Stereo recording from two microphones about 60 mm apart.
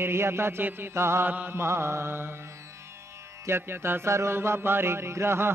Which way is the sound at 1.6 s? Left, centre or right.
Right.